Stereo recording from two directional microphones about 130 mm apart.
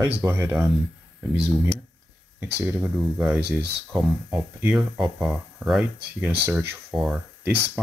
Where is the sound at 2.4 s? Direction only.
15° right (ahead or behind).